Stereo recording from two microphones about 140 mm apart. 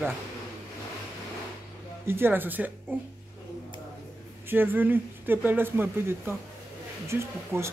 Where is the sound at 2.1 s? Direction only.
15° right (ahead or behind).